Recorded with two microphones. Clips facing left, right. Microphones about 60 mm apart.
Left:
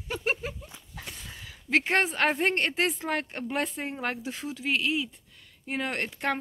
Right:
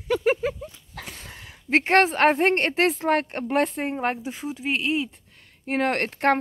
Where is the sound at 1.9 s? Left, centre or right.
Right.